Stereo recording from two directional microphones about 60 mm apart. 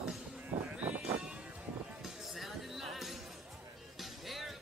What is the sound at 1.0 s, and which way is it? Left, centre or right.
Sheep, centre.